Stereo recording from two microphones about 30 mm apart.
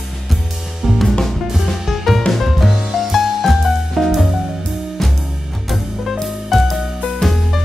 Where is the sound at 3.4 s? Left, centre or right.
Centre.